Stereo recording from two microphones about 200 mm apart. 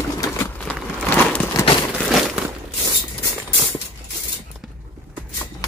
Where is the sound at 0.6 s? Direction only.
5° left (ahead or behind).